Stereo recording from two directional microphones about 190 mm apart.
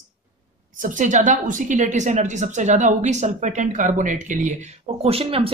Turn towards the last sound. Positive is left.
turn(degrees=-30)  # may be behind; listen again after turning